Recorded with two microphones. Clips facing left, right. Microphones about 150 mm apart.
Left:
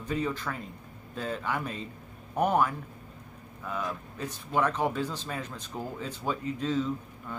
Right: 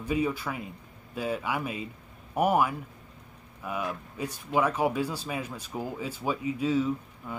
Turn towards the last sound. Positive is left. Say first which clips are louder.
# right 2 dB
turn(degrees=-10)  # may be behind; listen again after turning